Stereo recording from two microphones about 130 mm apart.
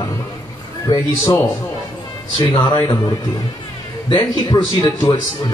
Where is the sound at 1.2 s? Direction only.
20° left (ahead or behind).